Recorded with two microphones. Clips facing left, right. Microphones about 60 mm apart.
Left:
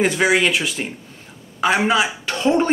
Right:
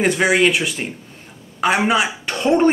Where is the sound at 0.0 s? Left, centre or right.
Centre.